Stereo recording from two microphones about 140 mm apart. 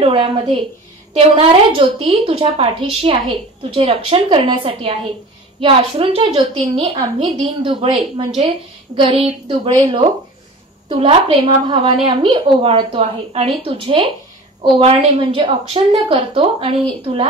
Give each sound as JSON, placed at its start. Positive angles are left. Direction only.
{"t": 0.0, "sound": "a woman's voice", "side_deg": -40}
{"t": 8.9, "sound": "a woman's voice", "side_deg": -40}